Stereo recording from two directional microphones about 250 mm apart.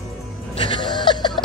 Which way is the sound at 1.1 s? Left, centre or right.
Centre.